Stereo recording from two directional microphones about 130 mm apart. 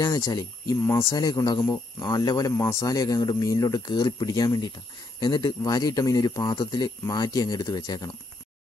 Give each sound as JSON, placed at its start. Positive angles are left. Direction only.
{"t": 0.0, "sound": "a man's voice", "side_deg": 30}